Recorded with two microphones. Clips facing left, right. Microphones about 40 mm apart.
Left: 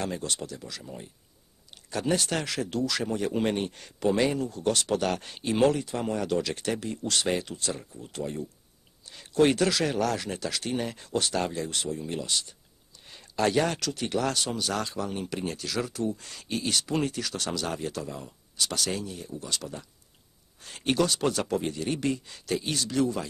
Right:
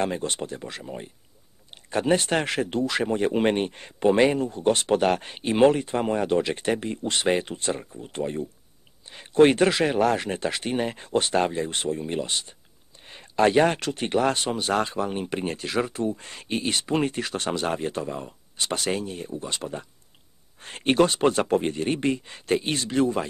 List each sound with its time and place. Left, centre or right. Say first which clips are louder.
0.0 s speech: right 5 dB; right